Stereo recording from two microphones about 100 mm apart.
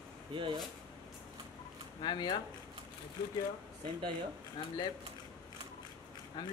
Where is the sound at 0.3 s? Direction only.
55° right (ahead or behind).